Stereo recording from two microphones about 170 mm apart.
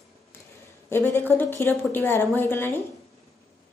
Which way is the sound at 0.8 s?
15° left (ahead or behind).